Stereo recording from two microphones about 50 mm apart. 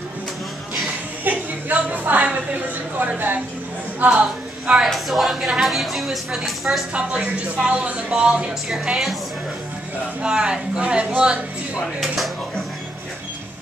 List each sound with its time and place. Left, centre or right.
1.2 s a sound: right
3.0 s a woman's voice: right
4.1 s a sound: centre
4.8 s a woman's voice: centre
6.9 s a woman's voice: right
10.2 s speech: centre